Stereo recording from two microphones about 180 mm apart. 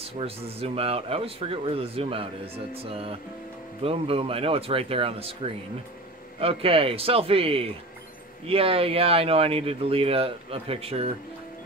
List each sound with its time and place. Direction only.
0.0 s speech: 35° right (ahead or behind)